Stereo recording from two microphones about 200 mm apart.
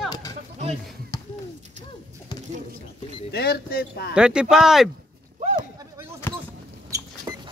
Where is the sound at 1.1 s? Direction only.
20° left (ahead or behind).